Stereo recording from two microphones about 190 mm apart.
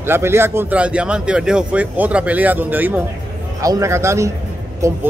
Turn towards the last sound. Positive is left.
turn(degrees=-15)  # may be behind; listen again after turning